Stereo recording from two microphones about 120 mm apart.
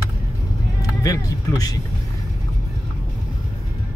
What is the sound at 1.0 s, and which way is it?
Speech, 30° left (ahead or behind).